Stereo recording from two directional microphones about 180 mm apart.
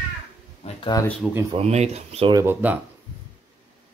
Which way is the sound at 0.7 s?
25° left (ahead or behind).